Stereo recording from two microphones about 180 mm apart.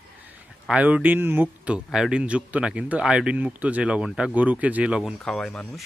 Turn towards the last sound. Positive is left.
turn(degrees=5)  # may be behind; listen again after turning